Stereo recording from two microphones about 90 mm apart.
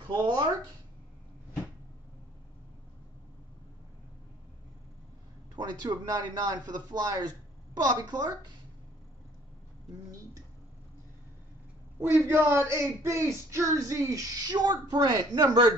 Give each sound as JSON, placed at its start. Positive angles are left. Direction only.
{"t": 0.1, "sound": "a sound", "side_deg": -50}
{"t": 5.6, "sound": "a man's voice", "side_deg": -50}
{"t": 12.2, "sound": "a man's voice", "side_deg": -25}